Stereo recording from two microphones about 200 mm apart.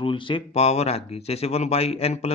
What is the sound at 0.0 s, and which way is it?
A man's voice, 25° left (ahead or behind).